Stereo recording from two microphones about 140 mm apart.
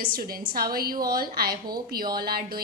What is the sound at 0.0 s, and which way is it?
A woman's voice, 90° right.